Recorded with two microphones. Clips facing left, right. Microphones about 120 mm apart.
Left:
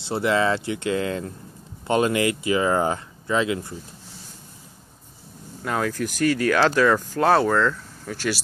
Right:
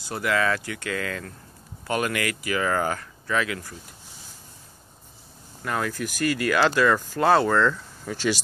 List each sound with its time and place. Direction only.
0.0 s speech: 25° left (ahead or behind)
5.6 s speech: 10° left (ahead or behind)
6.1 s speech: 5° right (ahead or behind)